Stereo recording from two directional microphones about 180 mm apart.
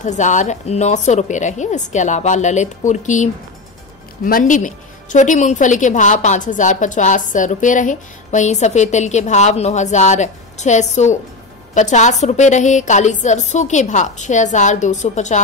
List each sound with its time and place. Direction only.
0.0 s a woman's voice: 45° left (ahead or behind)